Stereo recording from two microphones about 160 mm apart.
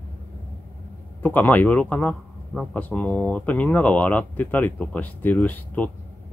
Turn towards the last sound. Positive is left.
turn(degrees=10)  # may be behind; listen again after turning